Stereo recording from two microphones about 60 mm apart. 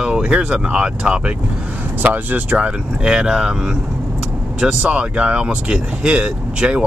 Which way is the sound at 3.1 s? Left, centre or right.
Centre.